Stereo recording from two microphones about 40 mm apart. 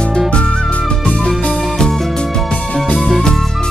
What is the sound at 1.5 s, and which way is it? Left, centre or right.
Music, centre.